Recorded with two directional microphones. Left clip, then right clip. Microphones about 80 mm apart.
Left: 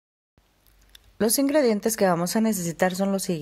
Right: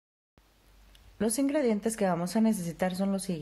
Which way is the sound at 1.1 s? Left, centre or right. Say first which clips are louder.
Left 7 dB; left.